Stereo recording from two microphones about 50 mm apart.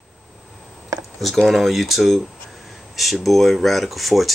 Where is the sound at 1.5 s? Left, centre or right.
Centre.